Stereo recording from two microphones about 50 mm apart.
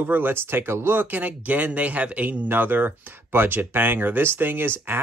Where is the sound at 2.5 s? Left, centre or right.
Right.